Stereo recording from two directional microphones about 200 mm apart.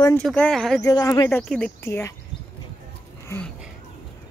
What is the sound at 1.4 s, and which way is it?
Speech, 5° left (ahead or behind).